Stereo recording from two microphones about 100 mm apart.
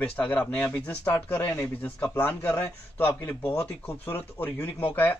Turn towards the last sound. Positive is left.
turn(degrees=20)  # may be behind; listen again after turning